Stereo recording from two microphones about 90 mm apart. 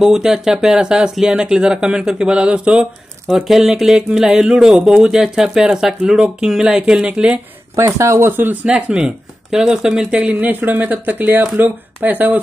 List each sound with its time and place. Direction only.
0.0 s speech: 5° right (ahead or behind)
7.7 s speech: 35° right (ahead or behind)
8.6 s speech: 15° right (ahead or behind)
10.4 s speech: 20° right (ahead or behind)